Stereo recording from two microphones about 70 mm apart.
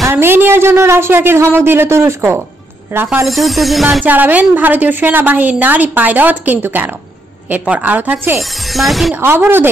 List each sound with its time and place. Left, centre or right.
0.1 s speech: right
2.9 s a woman's voice: right
3.3 s music: centre
4.0 s a woman's voice: right
8.4 s music: centre
9.4 s speech: right